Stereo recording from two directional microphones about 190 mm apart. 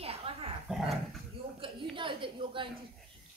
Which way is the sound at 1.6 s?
25° right (ahead or behind).